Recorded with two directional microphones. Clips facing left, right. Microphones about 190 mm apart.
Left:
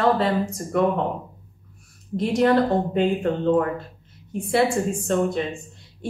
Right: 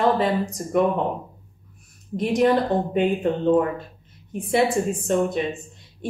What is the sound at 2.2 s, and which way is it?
A woman's voice, 15° right (ahead or behind).